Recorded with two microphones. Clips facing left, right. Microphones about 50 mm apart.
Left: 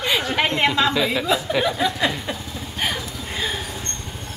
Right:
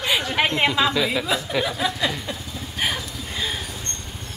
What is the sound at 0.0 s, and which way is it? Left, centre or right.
Speech, centre.